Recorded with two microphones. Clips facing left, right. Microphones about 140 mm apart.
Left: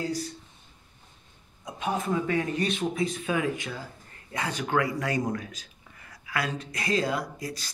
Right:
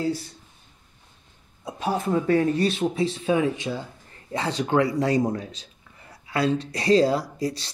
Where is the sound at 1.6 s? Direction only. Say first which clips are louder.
Right 4 dB; 30° right (ahead or behind).